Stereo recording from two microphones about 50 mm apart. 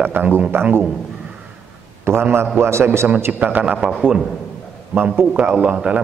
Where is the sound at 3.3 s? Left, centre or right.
Right.